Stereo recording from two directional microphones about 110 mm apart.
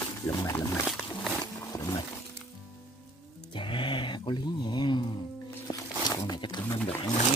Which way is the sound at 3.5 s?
45° left (ahead or behind).